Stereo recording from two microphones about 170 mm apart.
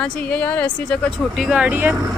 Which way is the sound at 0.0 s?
5° left (ahead or behind).